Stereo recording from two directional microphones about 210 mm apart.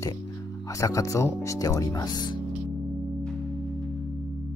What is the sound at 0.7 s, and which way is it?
Speech, 15° left (ahead or behind).